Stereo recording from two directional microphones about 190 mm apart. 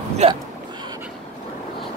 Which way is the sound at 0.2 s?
35° right (ahead or behind).